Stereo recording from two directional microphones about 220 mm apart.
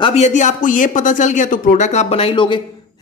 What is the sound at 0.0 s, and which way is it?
Speech, 30° left (ahead or behind).